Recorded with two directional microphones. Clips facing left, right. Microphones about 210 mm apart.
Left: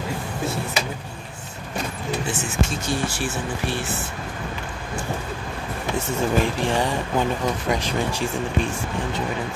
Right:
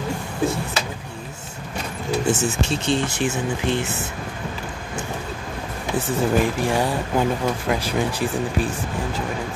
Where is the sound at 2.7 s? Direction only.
20° right (ahead or behind).